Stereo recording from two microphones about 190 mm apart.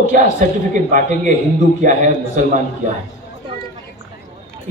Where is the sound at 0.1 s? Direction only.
45° right (ahead or behind).